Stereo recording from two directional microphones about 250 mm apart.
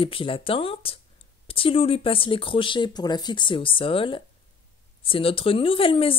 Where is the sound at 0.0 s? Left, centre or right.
Left.